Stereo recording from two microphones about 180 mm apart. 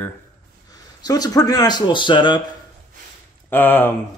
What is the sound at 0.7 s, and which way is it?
Speech, 20° left (ahead or behind).